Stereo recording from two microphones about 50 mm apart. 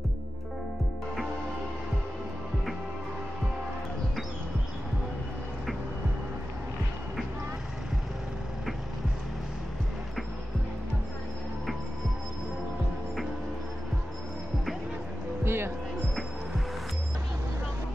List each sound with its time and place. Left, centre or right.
15.4 s music: right